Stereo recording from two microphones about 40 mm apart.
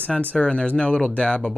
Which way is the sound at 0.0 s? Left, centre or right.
Left.